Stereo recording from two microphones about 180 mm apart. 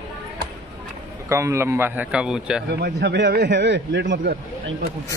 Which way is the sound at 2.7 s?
65° right (ahead or behind).